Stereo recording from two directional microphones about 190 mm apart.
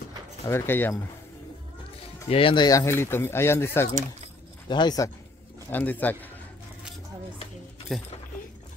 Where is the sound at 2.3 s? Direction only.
30° left (ahead or behind).